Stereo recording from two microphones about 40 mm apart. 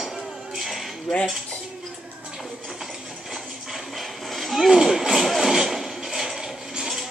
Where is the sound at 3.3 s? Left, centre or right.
Centre.